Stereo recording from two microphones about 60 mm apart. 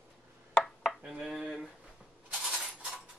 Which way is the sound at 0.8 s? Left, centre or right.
Centre.